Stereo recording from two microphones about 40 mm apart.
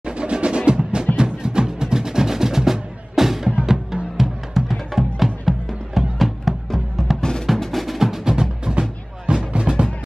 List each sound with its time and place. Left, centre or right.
0.0 s music: right; by 7.2 s centre
7.2 s music: centre
7.4 s music: centre
8.0 s music: centre